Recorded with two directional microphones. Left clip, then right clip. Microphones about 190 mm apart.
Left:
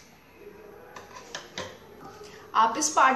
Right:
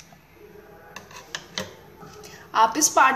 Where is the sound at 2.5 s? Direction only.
50° right (ahead or behind).